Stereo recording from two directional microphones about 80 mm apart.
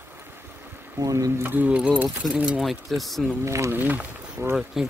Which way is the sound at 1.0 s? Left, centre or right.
Right.